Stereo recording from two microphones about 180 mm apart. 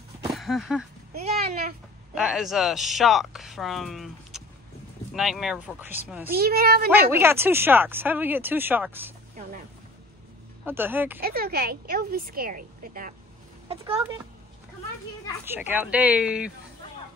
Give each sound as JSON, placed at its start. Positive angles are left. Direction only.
{"t": 0.3, "sound": "speech", "side_deg": 0}
{"t": 2.1, "sound": "speech", "side_deg": 0}
{"t": 6.3, "sound": "a woman's voice", "side_deg": -60}
{"t": 6.9, "sound": "speech", "side_deg": -15}
{"t": 10.6, "sound": "speech", "side_deg": -10}
{"t": 11.1, "sound": "a woman's voice", "side_deg": -60}
{"t": 13.7, "sound": "speech", "side_deg": -30}
{"t": 15.4, "sound": "speech", "side_deg": -10}